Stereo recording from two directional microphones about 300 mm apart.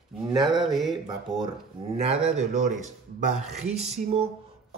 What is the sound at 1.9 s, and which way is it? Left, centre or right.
Speech, right.